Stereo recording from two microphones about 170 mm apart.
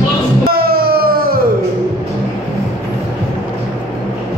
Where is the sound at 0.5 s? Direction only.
65° right (ahead or behind).